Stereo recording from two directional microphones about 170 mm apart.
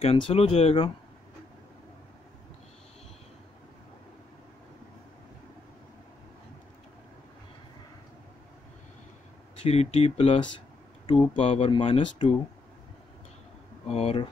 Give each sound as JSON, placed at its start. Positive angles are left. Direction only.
{"t": 0.0, "sound": "speech", "side_deg": 35}
{"t": 9.6, "sound": "speech", "side_deg": 35}
{"t": 13.8, "sound": "speech", "side_deg": 35}